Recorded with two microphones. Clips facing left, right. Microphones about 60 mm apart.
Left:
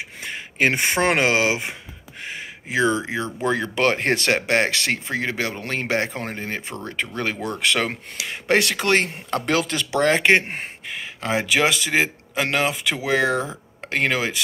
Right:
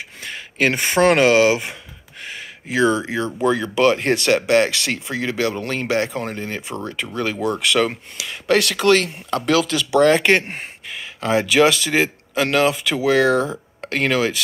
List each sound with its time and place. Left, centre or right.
0.2 s speech: left
2.2 s a sound: left
3.0 s speech: left
7.6 s speech: left